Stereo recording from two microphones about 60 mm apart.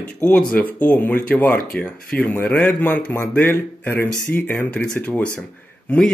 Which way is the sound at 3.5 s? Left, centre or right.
Left.